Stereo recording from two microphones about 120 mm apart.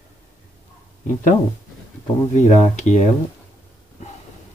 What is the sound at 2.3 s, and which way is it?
Speech, 75° left (ahead or behind).